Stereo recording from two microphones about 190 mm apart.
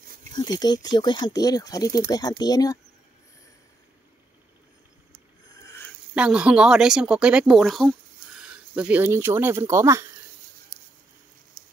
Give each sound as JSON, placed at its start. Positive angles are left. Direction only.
{"t": 0.3, "sound": "speech", "side_deg": 20}
{"t": 6.1, "sound": "speech", "side_deg": -5}